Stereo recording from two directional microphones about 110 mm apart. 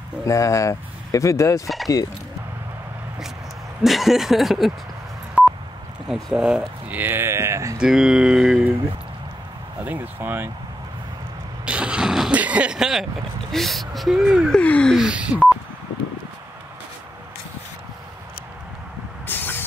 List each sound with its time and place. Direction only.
0.2 s speech: 30° left (ahead or behind)
3.8 s speech: centre (ahead or behind)
5.4 s a sound: 5° right (ahead or behind)
6.0 s speech: centre (ahead or behind); by 7.7 s 25° right (ahead or behind)
7.7 s speech: 5° right (ahead or behind)
9.8 s speech: 15° right (ahead or behind)
11.6 s a sound: 10° right (ahead or behind)
13.5 s speech: centre (ahead or behind)
14.6 s speech: 10° left (ahead or behind)
15.0 s speech: 10° right (ahead or behind)
19.2 s vehicle: 15° left (ahead or behind)